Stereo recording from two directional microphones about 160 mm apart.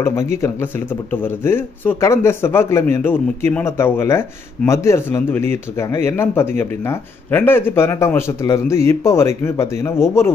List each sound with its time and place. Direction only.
0.0 s speech: 20° left (ahead or behind)